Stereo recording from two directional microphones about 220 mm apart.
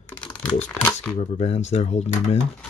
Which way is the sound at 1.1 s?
30° left (ahead or behind).